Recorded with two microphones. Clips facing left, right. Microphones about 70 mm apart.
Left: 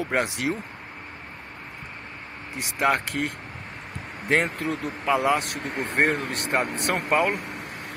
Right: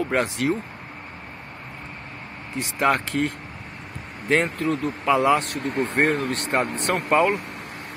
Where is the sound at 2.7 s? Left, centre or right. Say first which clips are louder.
Right 2 dB; centre.